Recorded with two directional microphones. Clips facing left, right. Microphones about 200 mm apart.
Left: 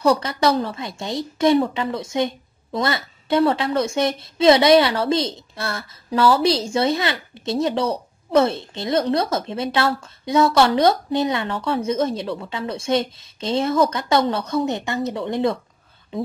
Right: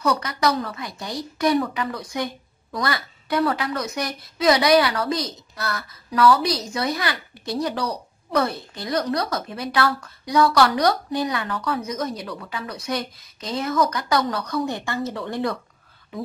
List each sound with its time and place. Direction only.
0.0 s a woman's voice: 30° left (ahead or behind)